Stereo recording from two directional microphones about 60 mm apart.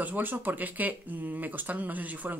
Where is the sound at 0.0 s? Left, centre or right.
Right.